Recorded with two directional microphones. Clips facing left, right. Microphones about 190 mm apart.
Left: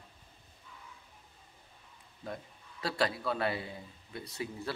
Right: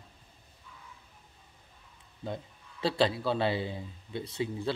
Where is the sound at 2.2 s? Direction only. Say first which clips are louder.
Right 4 dB; 25° right (ahead or behind).